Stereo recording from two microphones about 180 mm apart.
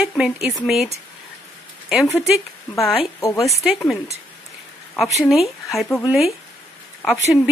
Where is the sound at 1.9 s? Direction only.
Centre (ahead or behind).